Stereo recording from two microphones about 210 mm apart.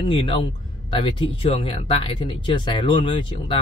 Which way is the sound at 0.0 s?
25° left (ahead or behind).